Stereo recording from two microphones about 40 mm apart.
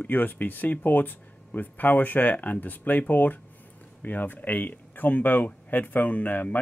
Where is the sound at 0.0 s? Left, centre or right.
Left.